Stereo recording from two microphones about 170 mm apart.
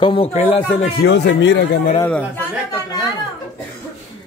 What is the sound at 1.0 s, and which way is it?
Speech, 90° left.